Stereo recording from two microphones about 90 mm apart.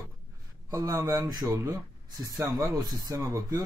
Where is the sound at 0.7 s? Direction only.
35° right (ahead or behind).